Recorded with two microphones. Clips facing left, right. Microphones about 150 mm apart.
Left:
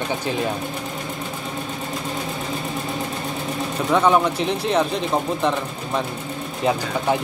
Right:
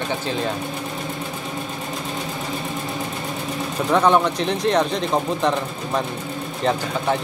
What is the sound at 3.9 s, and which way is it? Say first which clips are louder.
Speech: even; centre (ahead or behind).